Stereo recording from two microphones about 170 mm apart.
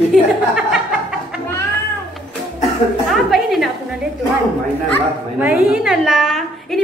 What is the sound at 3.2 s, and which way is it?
Speech, centre (ahead or behind).